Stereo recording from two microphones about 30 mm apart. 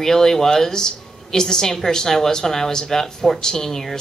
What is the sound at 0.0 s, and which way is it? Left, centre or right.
A woman's voice, centre.